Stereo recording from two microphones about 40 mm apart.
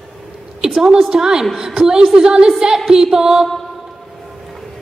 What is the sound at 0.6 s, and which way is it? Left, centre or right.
A woman's voice, centre.